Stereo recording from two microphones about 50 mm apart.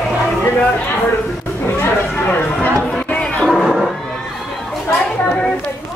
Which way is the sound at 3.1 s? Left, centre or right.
Centre.